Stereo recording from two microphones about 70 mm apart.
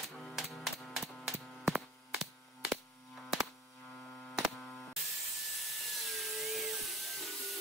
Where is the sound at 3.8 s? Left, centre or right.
Centre.